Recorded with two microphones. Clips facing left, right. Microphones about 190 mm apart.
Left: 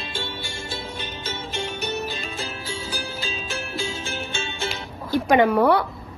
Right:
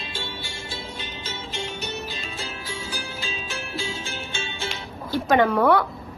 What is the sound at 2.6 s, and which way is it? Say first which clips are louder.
Music: left 2 dB; 30° left (ahead or behind).